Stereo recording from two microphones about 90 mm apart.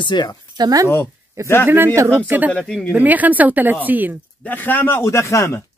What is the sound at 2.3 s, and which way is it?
Speech, 20° right (ahead or behind).